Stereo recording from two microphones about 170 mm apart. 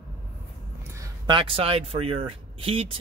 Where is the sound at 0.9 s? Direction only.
25° right (ahead or behind).